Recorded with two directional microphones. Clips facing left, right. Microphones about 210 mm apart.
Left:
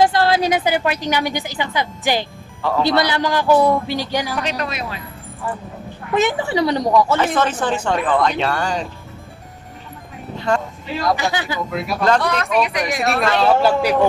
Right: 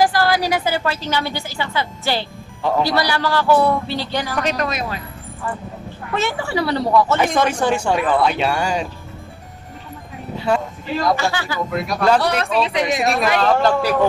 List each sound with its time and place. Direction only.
0.0 s a woman's voice: 25° left (ahead or behind)
4.4 s a man's voice: 45° right (ahead or behind)
6.1 s a woman's voice: 20° left (ahead or behind)
7.3 s a woman's voice: 10° right (ahead or behind)
10.4 s music: 5° right (ahead or behind)
11.1 s a woman's voice: 15° left (ahead or behind)
11.7 s speech: centre (ahead or behind)
12.2 s speech: 30° right (ahead or behind)
13.4 s a woman's voice: 10° left (ahead or behind)